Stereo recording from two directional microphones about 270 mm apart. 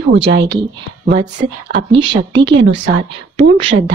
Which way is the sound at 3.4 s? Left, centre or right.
Centre.